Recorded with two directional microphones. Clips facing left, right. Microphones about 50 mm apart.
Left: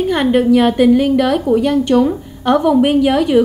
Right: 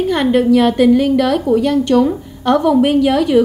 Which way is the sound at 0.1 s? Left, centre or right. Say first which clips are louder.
Even; centre.